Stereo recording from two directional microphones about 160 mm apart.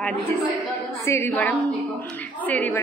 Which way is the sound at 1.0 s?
15° left (ahead or behind).